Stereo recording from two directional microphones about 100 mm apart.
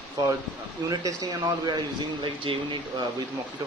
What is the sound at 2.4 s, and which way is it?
Speech, 60° right (ahead or behind).